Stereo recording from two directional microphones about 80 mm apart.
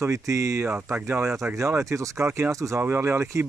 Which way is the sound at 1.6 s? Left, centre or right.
Right.